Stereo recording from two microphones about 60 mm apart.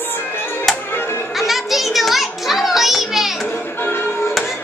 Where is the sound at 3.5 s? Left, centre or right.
Left.